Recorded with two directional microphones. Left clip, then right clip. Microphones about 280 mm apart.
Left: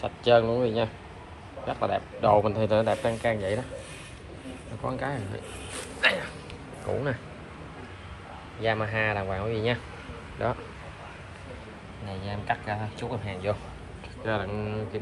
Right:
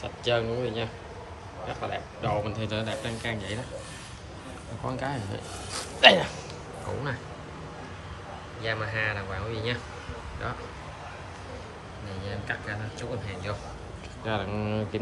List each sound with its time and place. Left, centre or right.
0.0 s speech: centre
4.8 s speech: centre
5.9 s speech: right
8.6 s speech: centre
12.3 s speech: centre
14.2 s speech: centre